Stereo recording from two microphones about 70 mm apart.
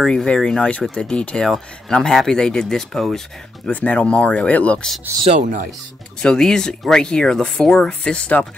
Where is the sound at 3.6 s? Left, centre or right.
Centre.